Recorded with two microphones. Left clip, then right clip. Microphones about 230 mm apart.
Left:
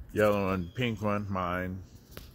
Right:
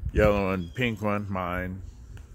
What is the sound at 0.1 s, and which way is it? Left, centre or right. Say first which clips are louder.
Speech: right 3 dB; right.